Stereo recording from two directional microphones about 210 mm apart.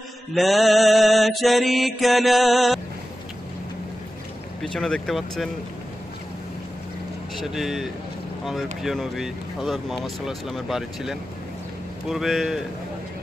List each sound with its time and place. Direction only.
0.3 s mantra: centre (ahead or behind)
4.6 s mantra: centre (ahead or behind)
7.3 s mantra: centre (ahead or behind)